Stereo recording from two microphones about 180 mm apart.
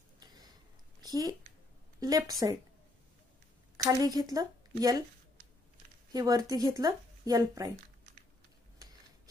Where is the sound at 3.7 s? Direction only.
20° right (ahead or behind).